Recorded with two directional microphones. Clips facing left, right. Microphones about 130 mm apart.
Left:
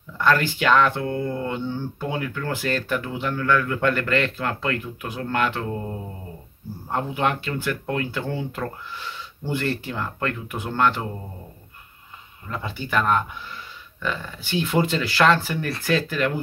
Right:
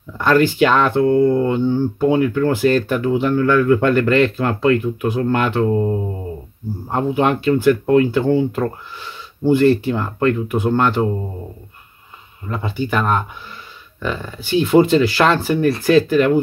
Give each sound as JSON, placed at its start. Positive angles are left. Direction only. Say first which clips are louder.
{"t": 0.2, "sound": "speech", "louder": "right 7 dB", "side_deg": -20}
{"t": 12.4, "sound": "speech", "louder": "right 8 dB", "side_deg": -20}
{"t": 14.8, "sound": "speech", "louder": "right 7 dB", "side_deg": -20}